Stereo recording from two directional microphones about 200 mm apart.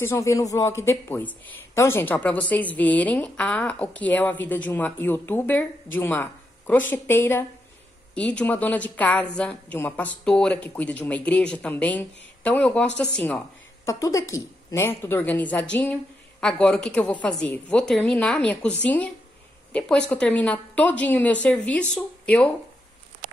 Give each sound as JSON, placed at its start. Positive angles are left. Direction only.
{"t": 0.0, "sound": "a woman's voice", "side_deg": 15}
{"t": 19.7, "sound": "a woman's voice", "side_deg": 5}